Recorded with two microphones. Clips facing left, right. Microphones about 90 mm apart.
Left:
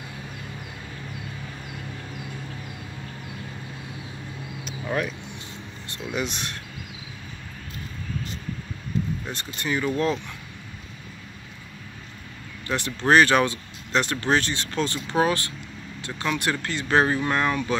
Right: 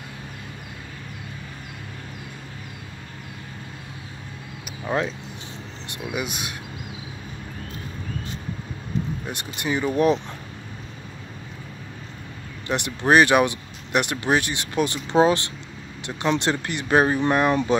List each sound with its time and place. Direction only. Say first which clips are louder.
4.6 s a sound: right 2 dB; 20° right (ahead or behind)
5.9 s speech: even; 15° right (ahead or behind)
9.3 s speech: right 4 dB; 15° right (ahead or behind)
12.6 s speech: right 1 dB; 20° right (ahead or behind)